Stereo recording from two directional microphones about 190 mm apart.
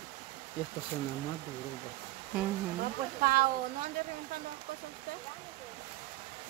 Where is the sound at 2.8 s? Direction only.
50° right (ahead or behind).